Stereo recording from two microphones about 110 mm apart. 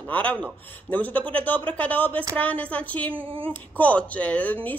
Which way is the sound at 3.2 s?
55° right (ahead or behind).